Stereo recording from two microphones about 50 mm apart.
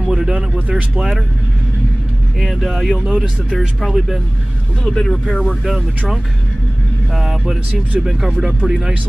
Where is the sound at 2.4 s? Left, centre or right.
Centre.